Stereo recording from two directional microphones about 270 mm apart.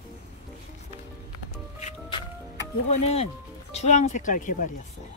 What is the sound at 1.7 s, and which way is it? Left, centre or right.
Music, left.